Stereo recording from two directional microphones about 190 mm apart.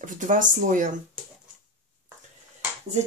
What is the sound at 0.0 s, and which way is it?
Speech, 45° right (ahead or behind).